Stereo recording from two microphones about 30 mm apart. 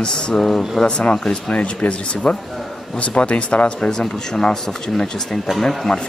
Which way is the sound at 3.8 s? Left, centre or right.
Centre.